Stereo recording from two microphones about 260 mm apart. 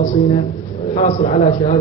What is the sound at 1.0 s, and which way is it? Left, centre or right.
Speech, left.